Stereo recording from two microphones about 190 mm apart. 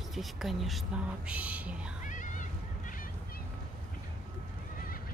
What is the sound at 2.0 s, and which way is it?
Music, 40° left (ahead or behind).